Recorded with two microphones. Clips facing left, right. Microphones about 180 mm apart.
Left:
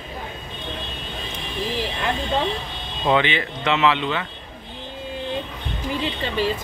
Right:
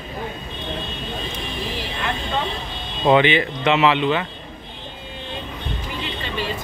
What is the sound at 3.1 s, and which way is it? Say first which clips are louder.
Speech: right 4 dB; 15° right (ahead or behind).